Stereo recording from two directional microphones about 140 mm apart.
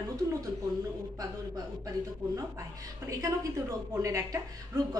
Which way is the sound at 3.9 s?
25° right (ahead or behind).